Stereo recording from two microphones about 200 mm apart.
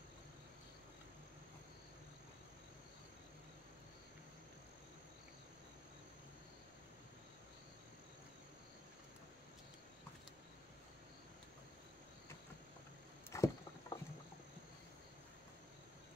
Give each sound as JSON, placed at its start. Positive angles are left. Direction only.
{"t": 13.3, "sound": "rowboat", "side_deg": 15}